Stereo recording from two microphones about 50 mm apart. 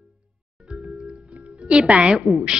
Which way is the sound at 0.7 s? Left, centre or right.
Centre.